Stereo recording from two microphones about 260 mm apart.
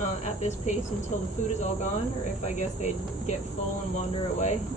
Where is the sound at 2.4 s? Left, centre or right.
Left.